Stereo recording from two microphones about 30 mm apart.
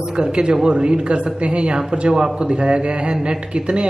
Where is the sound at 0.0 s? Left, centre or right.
Right.